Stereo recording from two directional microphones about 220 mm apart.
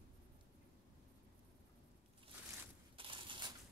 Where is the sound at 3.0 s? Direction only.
20° right (ahead or behind).